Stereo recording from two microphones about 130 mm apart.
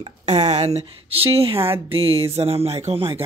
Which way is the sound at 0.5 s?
55° right (ahead or behind).